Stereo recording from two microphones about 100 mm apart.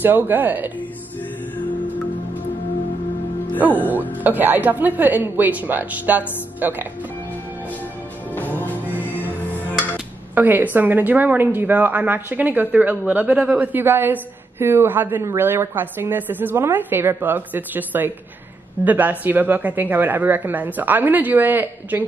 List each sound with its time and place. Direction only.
0.0 s a woman's voice: 20° right (ahead or behind)
3.5 s a woman's voice: 15° right (ahead or behind)
8.4 s music: 15° left (ahead or behind)
8.8 s music: 15° right (ahead or behind)
9.2 s music: 15° left (ahead or behind)
10.3 s a woman's voice: 20° right (ahead or behind)